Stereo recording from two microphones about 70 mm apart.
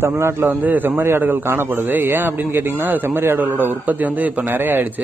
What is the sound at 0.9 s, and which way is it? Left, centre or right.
A man's voice, right.